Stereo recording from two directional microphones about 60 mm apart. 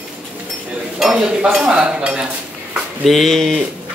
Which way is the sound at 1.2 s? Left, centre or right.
Centre.